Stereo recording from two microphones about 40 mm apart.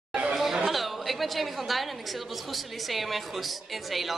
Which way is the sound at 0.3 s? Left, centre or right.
Centre.